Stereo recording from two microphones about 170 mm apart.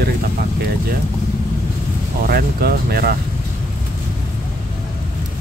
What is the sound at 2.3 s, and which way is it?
Speech, 65° right (ahead or behind).